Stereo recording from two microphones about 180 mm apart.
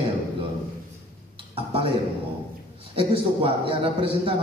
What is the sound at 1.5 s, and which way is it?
A man's voice, 30° right (ahead or behind).